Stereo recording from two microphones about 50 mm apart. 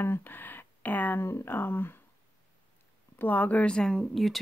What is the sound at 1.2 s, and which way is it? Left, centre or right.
Speech, left.